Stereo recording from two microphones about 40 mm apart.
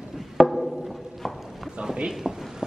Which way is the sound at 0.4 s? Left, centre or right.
Centre.